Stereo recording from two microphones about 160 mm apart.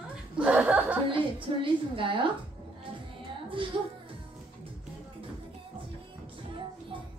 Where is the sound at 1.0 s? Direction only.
30° right (ahead or behind).